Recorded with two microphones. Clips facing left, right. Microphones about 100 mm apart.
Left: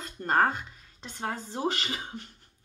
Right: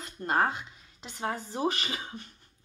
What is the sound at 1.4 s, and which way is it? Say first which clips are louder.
Speech: left 1 dB; 25° left (ahead or behind).